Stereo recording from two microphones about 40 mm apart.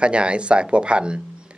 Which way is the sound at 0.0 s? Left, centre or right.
Right.